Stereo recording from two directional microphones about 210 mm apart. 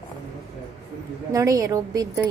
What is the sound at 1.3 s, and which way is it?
Speech, 15° right (ahead or behind).